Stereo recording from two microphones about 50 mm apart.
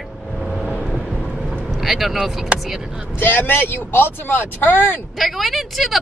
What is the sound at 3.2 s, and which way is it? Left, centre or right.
Speech, left.